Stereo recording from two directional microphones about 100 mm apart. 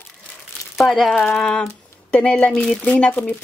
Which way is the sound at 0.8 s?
Centre (ahead or behind).